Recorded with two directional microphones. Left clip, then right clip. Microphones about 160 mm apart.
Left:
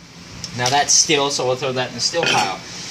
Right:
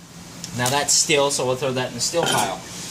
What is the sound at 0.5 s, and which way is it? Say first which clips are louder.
Speech: left 5 dB; 15° left (ahead or behind).